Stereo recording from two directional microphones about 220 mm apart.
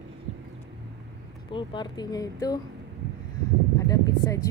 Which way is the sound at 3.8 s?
15° left (ahead or behind).